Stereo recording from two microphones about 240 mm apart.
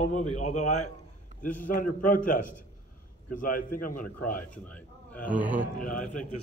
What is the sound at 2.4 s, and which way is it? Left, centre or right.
Speech, left.